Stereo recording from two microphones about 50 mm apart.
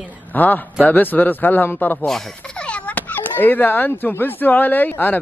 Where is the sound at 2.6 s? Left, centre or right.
Left.